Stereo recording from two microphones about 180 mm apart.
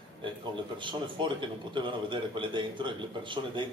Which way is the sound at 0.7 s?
25° right (ahead or behind).